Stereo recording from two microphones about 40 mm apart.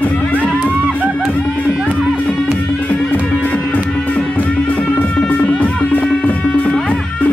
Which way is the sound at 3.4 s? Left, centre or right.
Left.